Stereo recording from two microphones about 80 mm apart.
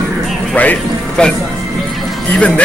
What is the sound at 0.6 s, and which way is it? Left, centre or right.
Speech, centre.